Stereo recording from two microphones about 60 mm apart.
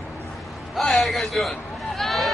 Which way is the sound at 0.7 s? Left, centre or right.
Centre.